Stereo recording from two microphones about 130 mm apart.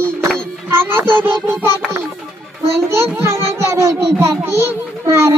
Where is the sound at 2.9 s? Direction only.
20° right (ahead or behind).